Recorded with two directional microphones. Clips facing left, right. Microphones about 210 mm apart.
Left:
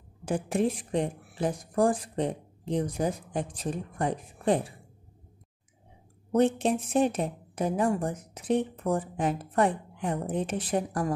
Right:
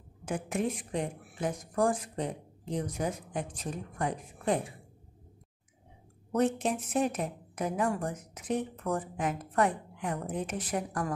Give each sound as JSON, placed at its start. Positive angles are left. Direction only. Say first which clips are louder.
{"t": 0.2, "sound": "a woman's voice", "louder": "left 5 dB", "side_deg": 30}
{"t": 6.3, "sound": "speech", "louder": "left 4 dB", "side_deg": 30}